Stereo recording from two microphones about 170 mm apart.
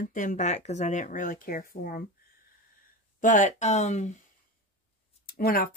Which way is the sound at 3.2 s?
45° left (ahead or behind).